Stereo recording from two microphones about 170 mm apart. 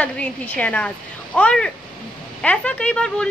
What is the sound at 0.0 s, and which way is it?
A woman's voice, 10° left (ahead or behind).